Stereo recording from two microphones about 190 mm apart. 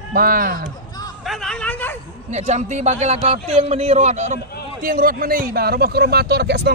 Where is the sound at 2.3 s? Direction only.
35° right (ahead or behind).